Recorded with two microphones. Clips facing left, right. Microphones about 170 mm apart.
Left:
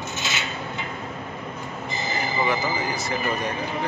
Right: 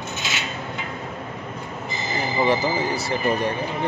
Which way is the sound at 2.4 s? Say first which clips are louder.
Right 5 dB; 30° right (ahead or behind).